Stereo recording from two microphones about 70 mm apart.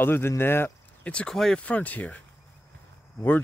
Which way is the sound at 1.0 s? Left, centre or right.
Centre.